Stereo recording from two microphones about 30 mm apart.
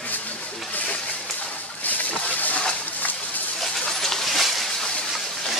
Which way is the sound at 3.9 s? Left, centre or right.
Centre.